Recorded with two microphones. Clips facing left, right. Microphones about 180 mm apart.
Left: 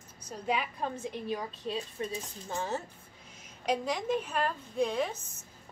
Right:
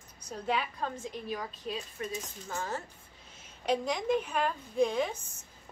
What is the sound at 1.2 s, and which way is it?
Speech, 20° left (ahead or behind).